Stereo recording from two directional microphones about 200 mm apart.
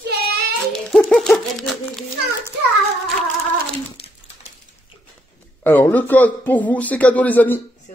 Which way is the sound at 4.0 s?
30° left (ahead or behind).